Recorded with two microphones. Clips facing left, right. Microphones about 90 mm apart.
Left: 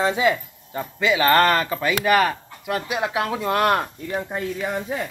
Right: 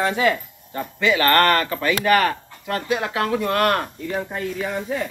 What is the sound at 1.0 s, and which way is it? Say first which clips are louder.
Speech: even; 15° left (ahead or behind).